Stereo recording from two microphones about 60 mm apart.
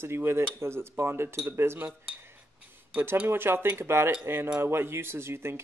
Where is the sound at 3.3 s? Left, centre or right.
Right.